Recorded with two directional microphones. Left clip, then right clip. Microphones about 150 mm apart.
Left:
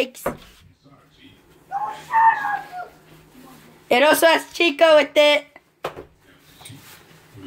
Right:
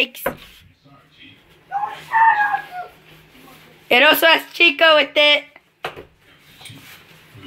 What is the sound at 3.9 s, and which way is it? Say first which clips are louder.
Speech: right 2 dB; 15° left (ahead or behind).